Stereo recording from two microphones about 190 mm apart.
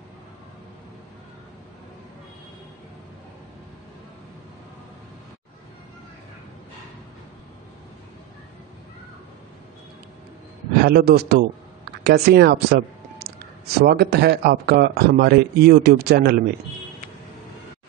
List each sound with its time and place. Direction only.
10.8 s speech: 55° right (ahead or behind)